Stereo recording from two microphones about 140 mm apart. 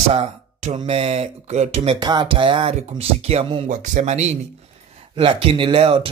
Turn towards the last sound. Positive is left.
turn(degrees=-40)  # may be behind; listen again after turning